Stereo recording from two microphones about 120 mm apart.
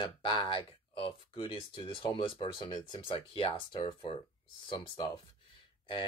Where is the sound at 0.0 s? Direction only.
45° left (ahead or behind).